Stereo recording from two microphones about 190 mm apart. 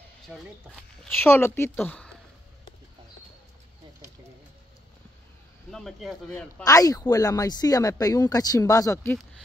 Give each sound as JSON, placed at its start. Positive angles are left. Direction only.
{"t": 1.1, "sound": "speech", "side_deg": 10}
{"t": 5.7, "sound": "speech", "side_deg": 0}
{"t": 6.6, "sound": "speech", "side_deg": 20}